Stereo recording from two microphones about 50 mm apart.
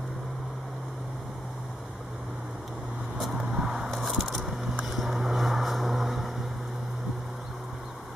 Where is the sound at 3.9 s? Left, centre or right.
Centre.